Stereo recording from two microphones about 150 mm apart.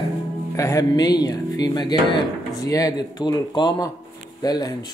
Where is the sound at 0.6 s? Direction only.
20° left (ahead or behind).